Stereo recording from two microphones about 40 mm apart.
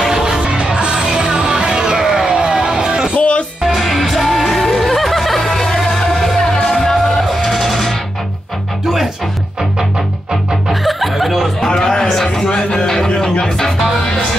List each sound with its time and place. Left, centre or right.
0.0 s music: centre
2.0 s a sound: centre
3.2 s music: left
3.6 s music: centre
8.8 s music: centre
10.3 s music: centre
11.6 s a sound: centre
13.2 s music: centre